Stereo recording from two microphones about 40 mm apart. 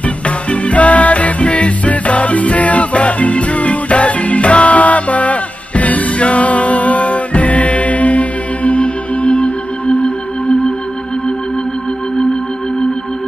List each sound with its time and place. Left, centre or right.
0.5 s music: left